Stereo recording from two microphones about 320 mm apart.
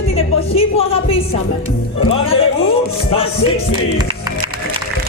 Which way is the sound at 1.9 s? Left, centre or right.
Centre.